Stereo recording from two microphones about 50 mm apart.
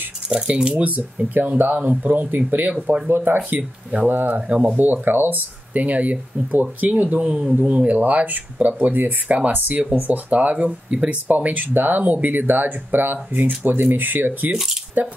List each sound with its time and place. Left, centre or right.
0.3 s speech: centre
4.1 s speech: right
4.4 s speech: right
4.7 s speech: right
7.2 s speech: right